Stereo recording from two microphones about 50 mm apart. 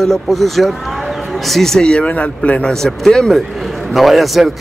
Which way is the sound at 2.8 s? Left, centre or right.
Centre.